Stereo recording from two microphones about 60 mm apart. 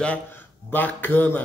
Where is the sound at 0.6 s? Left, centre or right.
Left.